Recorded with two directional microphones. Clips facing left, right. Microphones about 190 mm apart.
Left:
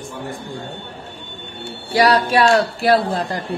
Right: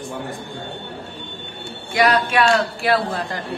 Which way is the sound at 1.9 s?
35° left (ahead or behind).